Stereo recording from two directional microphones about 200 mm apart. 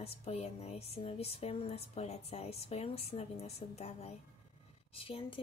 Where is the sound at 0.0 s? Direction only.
30° left (ahead or behind).